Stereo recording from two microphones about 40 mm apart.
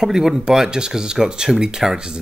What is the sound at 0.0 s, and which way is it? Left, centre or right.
Speech, centre.